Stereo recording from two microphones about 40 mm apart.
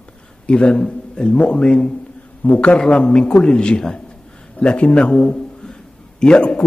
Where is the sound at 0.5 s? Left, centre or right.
Left.